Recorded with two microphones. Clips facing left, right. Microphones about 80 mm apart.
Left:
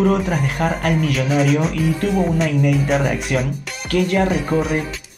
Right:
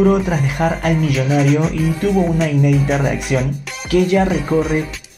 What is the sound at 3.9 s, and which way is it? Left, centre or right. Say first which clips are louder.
Music: right 3 dB; centre.